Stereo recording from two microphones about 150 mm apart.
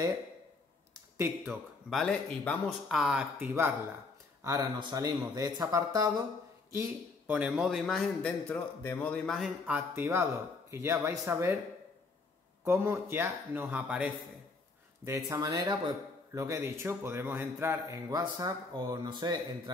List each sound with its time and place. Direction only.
0.9 s speech: 20° right (ahead or behind)
1.9 s speech: 5° left (ahead or behind)
3.3 s a man's voice: 15° right (ahead or behind)
7.3 s a man's voice: 5° right (ahead or behind)
9.7 s speech: 15° right (ahead or behind)
12.6 s speech: 15° right (ahead or behind)
15.0 s a man's voice: 25° right (ahead or behind)